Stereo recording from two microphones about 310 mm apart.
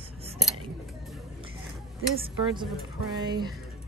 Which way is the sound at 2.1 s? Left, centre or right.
Centre.